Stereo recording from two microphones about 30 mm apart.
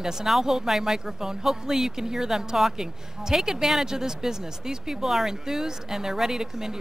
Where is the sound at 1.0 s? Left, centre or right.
Centre.